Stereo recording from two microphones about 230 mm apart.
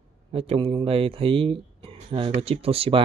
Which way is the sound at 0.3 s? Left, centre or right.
Right.